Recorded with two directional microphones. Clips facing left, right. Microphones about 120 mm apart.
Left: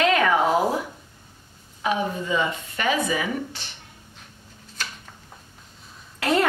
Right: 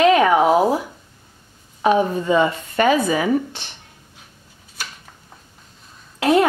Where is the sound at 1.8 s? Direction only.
40° right (ahead or behind).